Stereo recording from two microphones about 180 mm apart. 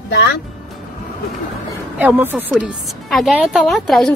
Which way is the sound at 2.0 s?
10° right (ahead or behind).